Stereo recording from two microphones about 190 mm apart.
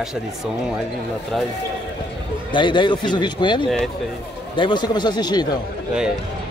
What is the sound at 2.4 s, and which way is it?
Speech, 25° left (ahead or behind).